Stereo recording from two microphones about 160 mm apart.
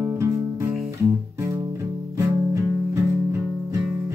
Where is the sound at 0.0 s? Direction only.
15° right (ahead or behind).